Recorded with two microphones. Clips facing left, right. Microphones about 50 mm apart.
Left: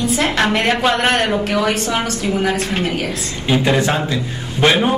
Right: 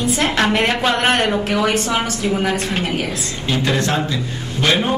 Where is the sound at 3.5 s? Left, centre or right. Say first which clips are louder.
Left 3 dB; centre.